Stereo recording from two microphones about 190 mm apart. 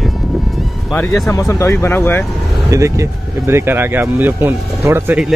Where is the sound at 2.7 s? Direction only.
15° right (ahead or behind).